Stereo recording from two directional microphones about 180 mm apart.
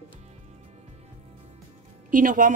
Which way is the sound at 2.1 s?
50° right (ahead or behind).